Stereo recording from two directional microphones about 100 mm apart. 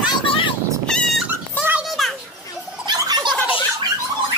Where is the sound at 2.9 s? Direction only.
45° right (ahead or behind).